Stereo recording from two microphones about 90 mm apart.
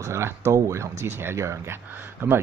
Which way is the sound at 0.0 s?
30° right (ahead or behind).